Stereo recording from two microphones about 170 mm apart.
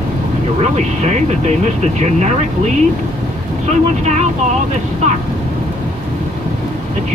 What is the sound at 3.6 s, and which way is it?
Speech, 40° right (ahead or behind).